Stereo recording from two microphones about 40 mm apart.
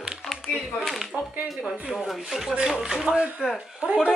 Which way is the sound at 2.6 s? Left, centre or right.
Centre.